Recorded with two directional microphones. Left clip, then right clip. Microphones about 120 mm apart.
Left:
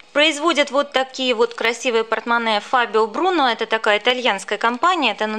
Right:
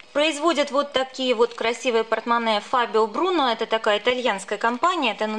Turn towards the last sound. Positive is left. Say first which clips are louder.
# left 4 dB
turn(degrees=30)  # may be behind; listen again after turning